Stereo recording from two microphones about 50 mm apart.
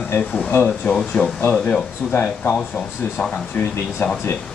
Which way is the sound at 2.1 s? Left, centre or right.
Left.